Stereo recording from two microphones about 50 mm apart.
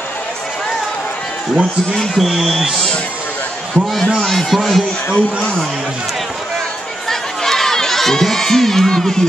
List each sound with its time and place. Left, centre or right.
2.0 s a man's voice: centre
3.7 s a man's voice: centre
7.1 s crowd: centre